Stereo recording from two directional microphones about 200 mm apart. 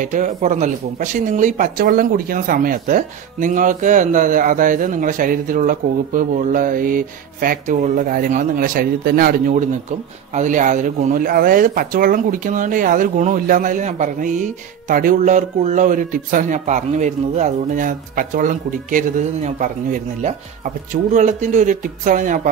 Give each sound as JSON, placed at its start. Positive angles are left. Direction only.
{"t": 0.0, "sound": "speech", "side_deg": -40}